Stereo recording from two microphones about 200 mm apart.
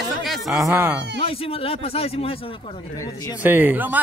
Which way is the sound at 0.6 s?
10° right (ahead or behind).